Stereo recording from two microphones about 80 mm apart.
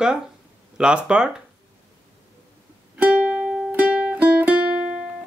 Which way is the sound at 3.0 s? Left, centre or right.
Centre.